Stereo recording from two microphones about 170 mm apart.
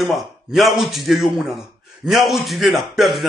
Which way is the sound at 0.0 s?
Centre (ahead or behind).